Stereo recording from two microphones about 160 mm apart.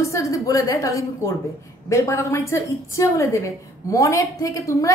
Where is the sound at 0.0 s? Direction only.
20° left (ahead or behind).